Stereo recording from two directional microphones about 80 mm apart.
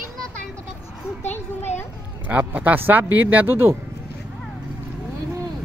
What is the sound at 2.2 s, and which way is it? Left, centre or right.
Speech, centre.